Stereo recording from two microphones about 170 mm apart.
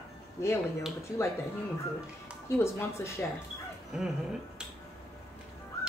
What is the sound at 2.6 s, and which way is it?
Speech, 15° left (ahead or behind).